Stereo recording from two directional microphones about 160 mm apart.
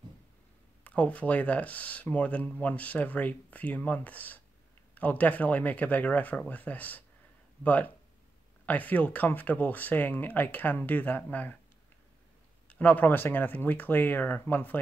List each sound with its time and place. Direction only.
0.8 s speech: 10° left (ahead or behind)
12.6 s speech: 10° left (ahead or behind)